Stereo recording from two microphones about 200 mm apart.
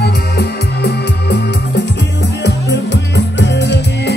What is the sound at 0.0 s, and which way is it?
Music, 55° left (ahead or behind).